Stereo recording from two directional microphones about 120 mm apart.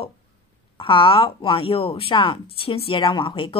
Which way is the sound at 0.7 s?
45° left (ahead or behind).